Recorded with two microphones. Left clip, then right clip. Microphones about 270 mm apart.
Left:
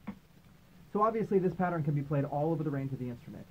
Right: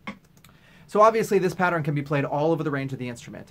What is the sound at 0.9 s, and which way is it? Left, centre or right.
Speech, centre.